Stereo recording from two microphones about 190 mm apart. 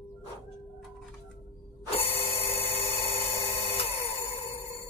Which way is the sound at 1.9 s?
30° left (ahead or behind).